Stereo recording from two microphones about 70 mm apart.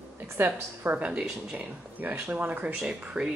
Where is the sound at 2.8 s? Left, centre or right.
Centre.